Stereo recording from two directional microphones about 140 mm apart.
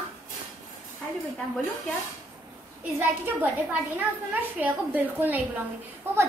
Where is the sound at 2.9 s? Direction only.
10° right (ahead or behind).